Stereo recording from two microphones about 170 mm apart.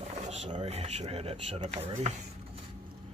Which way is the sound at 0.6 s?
40° right (ahead or behind).